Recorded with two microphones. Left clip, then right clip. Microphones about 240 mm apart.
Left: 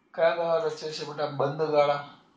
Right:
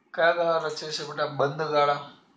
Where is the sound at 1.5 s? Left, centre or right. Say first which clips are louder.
Left 2 dB; right.